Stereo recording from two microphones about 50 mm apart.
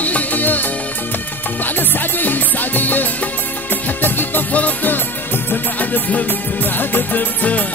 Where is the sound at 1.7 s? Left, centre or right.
Left.